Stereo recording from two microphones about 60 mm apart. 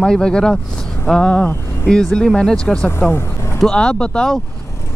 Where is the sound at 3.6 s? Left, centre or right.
Centre.